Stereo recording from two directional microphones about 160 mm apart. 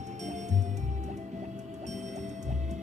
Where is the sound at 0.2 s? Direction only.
45° right (ahead or behind).